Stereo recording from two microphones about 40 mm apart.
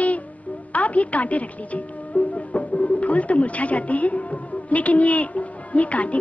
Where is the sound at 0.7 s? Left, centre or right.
Left.